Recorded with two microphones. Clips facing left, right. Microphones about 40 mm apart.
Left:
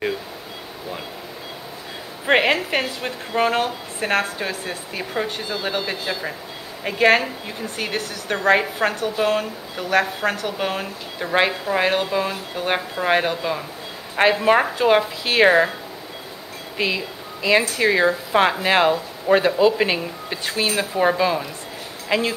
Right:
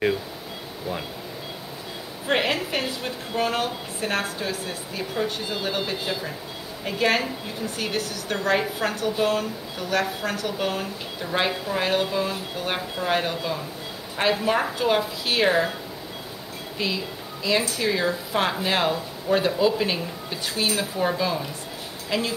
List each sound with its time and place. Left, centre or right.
2.2 s a woman's voice: left
16.7 s speech: left